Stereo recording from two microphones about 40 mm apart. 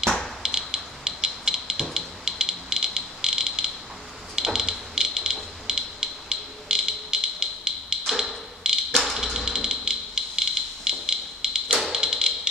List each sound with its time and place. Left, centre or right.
0.4 s chop: centre
1.0 s music: centre
4.4 s a sound: centre
8.6 s tap: centre
9.0 s a sound: centre
12.0 s tap: centre